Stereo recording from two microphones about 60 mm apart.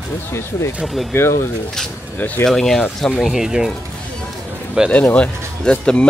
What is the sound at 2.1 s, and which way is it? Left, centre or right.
Speech, left.